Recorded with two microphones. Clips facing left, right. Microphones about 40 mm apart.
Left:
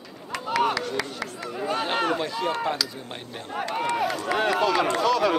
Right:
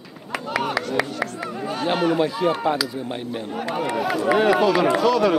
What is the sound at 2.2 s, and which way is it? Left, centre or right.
Speech, centre.